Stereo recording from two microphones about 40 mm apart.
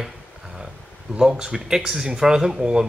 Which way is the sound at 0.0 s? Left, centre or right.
Centre.